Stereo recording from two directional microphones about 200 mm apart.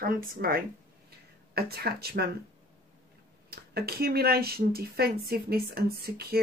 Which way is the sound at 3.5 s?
50° right (ahead or behind).